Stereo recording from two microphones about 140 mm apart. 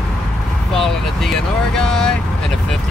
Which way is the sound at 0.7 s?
5° left (ahead or behind).